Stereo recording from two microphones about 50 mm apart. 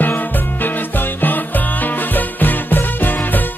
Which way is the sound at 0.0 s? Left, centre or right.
Left.